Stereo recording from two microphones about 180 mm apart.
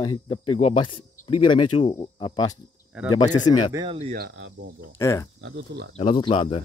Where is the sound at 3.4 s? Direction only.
20° left (ahead or behind).